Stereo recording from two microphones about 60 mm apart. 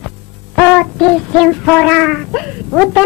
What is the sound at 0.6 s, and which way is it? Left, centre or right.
Child singing, centre.